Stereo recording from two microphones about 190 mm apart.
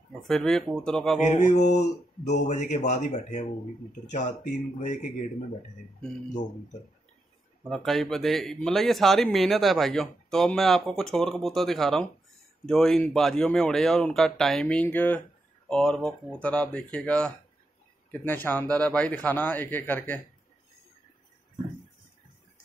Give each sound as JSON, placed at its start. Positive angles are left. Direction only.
{"t": 0.2, "sound": "speech", "side_deg": 0}
{"t": 1.3, "sound": "speech", "side_deg": 35}
{"t": 7.7, "sound": "a man's voice", "side_deg": 0}